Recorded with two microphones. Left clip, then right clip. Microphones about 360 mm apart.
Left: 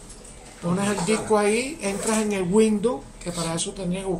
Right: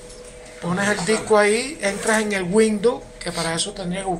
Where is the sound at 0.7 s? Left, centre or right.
Centre.